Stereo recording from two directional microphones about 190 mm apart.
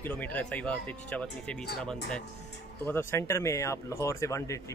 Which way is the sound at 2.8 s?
15° left (ahead or behind).